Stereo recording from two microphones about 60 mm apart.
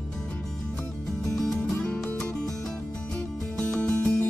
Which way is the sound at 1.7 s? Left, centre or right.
Left.